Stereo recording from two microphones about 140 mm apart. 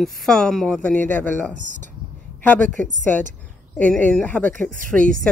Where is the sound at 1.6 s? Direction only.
65° right (ahead or behind).